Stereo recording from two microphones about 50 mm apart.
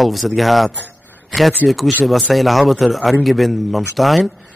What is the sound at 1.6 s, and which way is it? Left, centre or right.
Speech, centre.